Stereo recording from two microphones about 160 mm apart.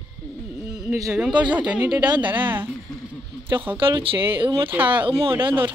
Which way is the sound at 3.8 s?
35° right (ahead or behind).